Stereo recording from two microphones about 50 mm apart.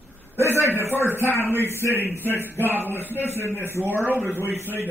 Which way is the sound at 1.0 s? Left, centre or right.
Right.